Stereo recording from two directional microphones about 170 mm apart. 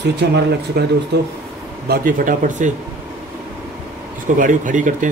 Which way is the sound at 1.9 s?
55° right (ahead or behind).